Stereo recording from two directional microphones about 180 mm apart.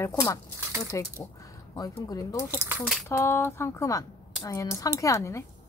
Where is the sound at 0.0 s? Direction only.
20° left (ahead or behind).